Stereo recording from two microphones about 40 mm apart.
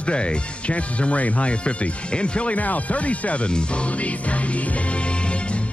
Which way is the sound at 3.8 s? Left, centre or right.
Left.